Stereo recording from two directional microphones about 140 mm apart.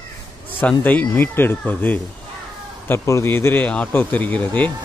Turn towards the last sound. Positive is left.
turn(degrees=10)  # may be behind; listen again after turning